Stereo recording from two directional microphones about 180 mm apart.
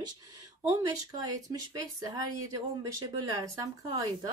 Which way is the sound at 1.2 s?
20° right (ahead or behind).